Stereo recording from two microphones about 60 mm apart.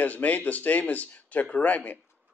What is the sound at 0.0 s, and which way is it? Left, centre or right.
Speech, left.